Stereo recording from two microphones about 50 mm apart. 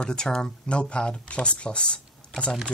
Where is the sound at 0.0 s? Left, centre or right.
Centre.